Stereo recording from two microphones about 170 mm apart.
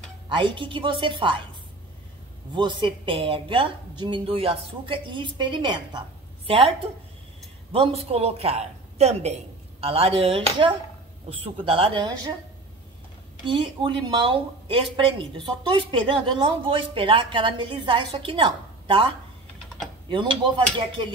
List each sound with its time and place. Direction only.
0.3 s speech: 30° right (ahead or behind)
2.5 s speech: 30° right (ahead or behind)
7.7 s speech: 35° right (ahead or behind)
13.5 s speech: 30° right (ahead or behind)
20.1 s speech: 30° right (ahead or behind)